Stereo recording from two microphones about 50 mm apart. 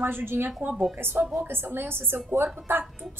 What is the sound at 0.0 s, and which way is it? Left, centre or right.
A woman's voice, right.